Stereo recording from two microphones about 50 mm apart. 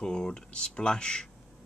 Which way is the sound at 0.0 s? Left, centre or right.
Centre.